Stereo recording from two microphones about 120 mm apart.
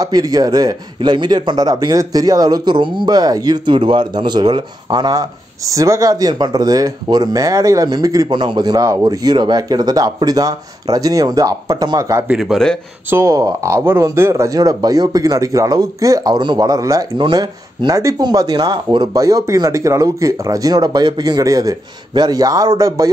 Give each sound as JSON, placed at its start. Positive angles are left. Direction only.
{"t": 0.0, "sound": "speech", "side_deg": -30}
{"t": 12.3, "sound": "speech", "side_deg": -5}
{"t": 13.1, "sound": "speech", "side_deg": -25}